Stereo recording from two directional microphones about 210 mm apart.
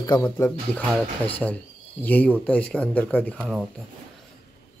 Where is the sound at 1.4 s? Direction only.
Centre (ahead or behind).